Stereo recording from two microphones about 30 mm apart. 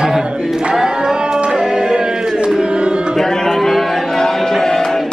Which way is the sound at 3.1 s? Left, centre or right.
Centre.